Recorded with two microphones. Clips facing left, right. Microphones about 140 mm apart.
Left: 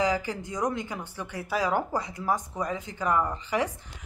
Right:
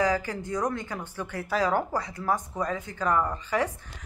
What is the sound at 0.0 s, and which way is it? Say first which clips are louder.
A man's voice: right 1 dB; 15° left (ahead or behind).